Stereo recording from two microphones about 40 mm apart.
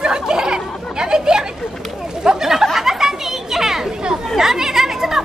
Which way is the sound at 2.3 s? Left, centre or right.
Centre.